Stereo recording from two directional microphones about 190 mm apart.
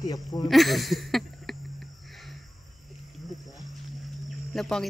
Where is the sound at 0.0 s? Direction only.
20° left (ahead or behind).